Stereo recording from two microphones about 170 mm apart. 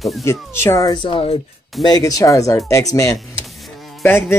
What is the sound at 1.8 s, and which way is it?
Speech, 20° left (ahead or behind).